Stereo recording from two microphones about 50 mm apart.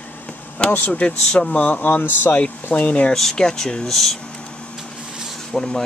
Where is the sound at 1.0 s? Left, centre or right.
Centre.